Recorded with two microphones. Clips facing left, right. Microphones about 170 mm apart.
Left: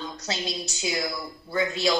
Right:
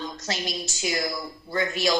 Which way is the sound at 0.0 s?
Centre (ahead or behind).